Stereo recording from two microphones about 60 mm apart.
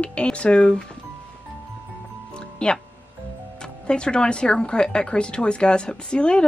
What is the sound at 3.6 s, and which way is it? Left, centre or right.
Speech, centre.